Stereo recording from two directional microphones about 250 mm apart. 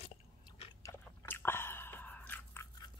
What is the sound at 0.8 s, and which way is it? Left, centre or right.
Biting, centre.